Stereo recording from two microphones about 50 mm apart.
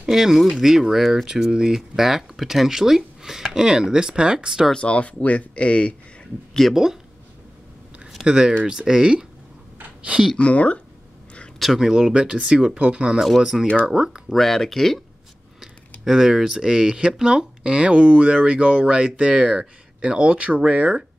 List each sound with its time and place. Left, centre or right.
0.0 s speech: centre
4.7 s speech: left
6.7 s speech: centre
8.3 s speech: centre
10.3 s speech: left
11.6 s speech: centre
11.9 s speech: centre
14.3 s speech: centre
15.6 s speech: centre